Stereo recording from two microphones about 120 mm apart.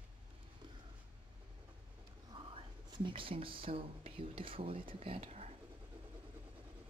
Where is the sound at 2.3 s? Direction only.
40° right (ahead or behind); by 5.5 s 60° right (ahead or behind).